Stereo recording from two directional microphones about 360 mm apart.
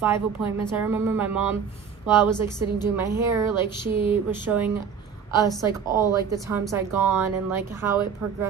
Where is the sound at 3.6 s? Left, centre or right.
Centre.